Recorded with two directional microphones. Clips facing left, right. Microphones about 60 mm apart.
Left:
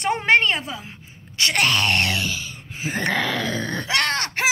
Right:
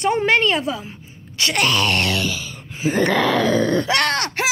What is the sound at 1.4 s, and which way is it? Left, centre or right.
Speech, left.